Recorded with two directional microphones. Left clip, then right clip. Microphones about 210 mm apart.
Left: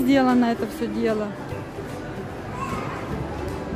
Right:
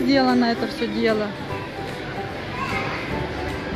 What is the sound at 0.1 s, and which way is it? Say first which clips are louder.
Speech: right 1 dB; 15° left (ahead or behind).